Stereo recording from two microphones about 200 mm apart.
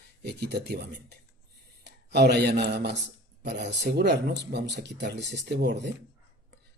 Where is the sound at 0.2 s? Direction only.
55° right (ahead or behind).